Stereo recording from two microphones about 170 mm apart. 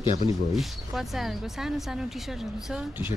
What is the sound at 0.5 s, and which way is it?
Speech, centre (ahead or behind).